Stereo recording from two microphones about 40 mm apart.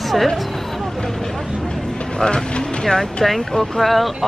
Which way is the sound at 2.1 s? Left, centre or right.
Left.